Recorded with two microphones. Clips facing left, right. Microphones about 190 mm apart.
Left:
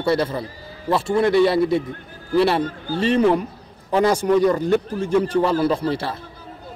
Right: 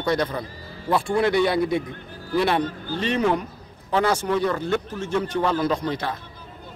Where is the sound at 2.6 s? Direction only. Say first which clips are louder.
Left 5 dB; 40° left (ahead or behind).